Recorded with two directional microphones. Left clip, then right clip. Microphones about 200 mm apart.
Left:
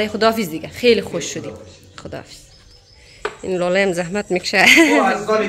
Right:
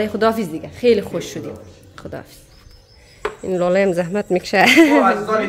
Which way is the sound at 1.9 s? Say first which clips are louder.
Even; 5° right (ahead or behind).